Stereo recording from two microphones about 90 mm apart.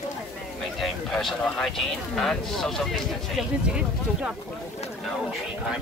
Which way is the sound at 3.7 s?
10° right (ahead or behind).